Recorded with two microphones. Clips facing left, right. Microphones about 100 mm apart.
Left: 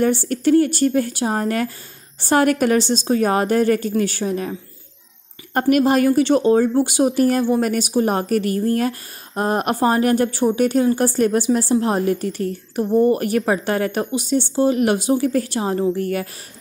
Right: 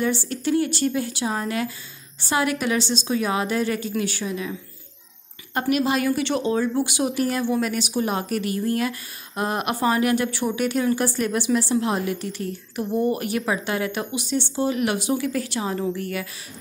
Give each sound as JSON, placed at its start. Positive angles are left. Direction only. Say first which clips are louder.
{"t": 0.0, "sound": "a woman's voice", "louder": "left 6 dB", "side_deg": 50}